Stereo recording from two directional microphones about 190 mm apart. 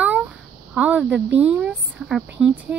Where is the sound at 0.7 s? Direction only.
5° right (ahead or behind).